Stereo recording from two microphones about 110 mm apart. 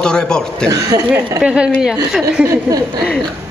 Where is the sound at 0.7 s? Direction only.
30° right (ahead or behind).